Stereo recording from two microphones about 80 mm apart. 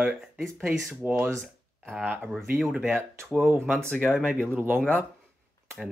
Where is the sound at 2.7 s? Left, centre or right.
Centre.